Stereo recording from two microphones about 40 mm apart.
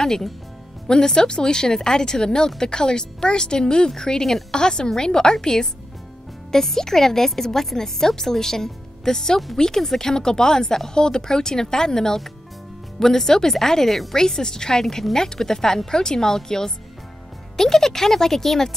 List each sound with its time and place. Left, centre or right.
0.0 s a woman's voice: centre